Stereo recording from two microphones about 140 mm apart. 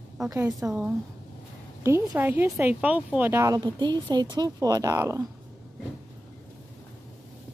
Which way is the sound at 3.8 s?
30° right (ahead or behind).